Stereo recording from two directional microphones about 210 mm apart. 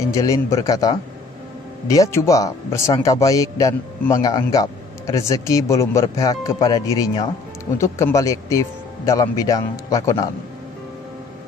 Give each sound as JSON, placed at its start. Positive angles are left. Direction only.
{"t": 0.1, "sound": "a man's voice", "side_deg": 15}